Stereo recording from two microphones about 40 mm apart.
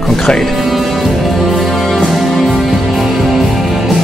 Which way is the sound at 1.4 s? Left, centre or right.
Centre.